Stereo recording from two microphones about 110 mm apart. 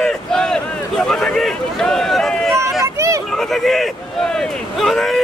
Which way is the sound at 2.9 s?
30° right (ahead or behind).